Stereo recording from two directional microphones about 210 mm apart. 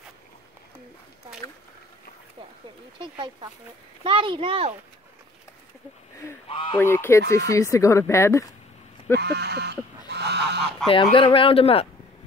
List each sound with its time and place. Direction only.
3.0 s a child's voice: 25° right (ahead or behind)
6.5 s speech: 25° left (ahead or behind)
6.8 s speech: 10° left (ahead or behind)
9.1 s goose: 50° right (ahead or behind)
10.9 s speech: 25° left (ahead or behind)